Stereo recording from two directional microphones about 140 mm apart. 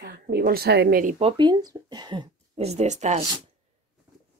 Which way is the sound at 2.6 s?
50° right (ahead or behind).